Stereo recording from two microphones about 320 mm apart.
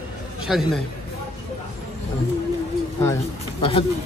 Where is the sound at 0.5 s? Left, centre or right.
Centre.